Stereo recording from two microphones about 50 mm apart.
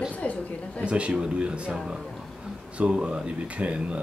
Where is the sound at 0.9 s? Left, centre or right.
Right.